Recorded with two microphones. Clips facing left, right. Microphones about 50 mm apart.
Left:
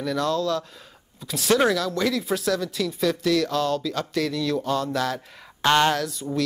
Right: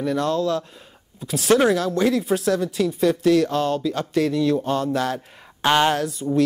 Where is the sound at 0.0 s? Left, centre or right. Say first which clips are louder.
Right 3 dB; right.